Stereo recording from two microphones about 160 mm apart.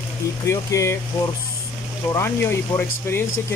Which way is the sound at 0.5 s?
20° left (ahead or behind).